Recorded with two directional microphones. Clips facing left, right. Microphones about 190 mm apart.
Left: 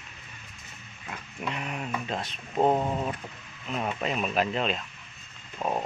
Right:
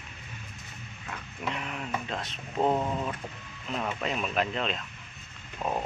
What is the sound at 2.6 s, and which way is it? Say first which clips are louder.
Speech: left 2 dB; 25° left (ahead or behind).